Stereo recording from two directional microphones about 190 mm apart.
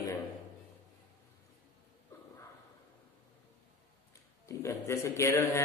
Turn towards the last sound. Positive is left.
turn(degrees=15)  # may be behind; listen again after turning